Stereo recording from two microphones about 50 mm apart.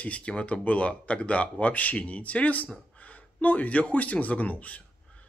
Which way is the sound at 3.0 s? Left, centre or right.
Left.